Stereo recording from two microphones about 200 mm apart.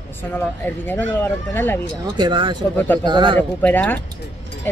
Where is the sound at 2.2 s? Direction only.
25° right (ahead or behind).